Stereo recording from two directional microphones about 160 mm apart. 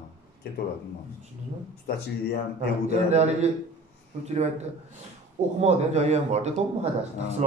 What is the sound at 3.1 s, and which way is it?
A man's voice, 45° right (ahead or behind).